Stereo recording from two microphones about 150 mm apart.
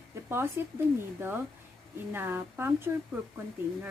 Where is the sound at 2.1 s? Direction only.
15° right (ahead or behind).